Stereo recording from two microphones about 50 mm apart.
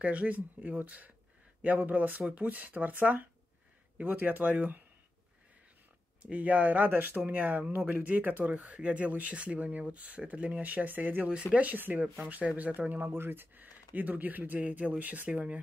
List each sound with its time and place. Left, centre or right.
0.0 s speech: right
6.3 s speech: right
6.9 s speech: right
7.2 s speech: right